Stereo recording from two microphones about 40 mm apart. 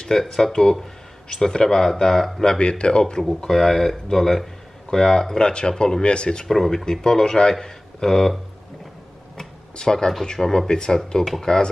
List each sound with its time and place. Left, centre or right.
0.2 s speech: centre
2.6 s speech: left
3.4 s speech: centre
6.0 s speech: left
6.4 s a man's voice: centre
9.8 s speech: centre